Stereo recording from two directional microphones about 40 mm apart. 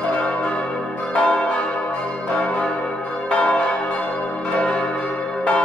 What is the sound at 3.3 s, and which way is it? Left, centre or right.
Change ringing, left.